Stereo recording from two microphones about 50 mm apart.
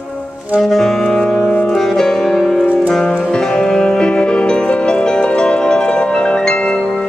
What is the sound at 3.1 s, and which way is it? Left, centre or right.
Music, left.